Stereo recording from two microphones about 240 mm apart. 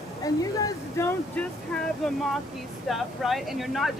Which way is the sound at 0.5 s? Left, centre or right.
Centre.